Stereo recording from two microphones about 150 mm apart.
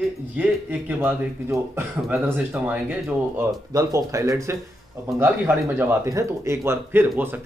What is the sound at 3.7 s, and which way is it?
Speech, 20° right (ahead or behind).